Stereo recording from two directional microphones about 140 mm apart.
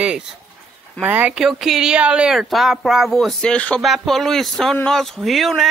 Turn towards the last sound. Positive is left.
turn(degrees=0)  # may be behind; listen again after turning